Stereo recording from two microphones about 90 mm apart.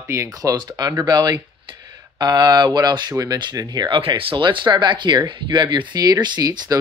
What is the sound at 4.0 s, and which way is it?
Speech, 90° right.